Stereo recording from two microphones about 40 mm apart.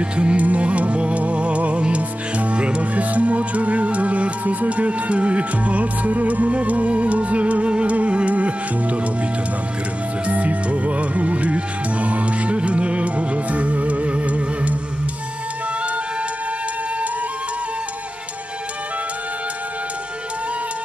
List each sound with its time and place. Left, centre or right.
0.0 s music: right
10.2 s music: right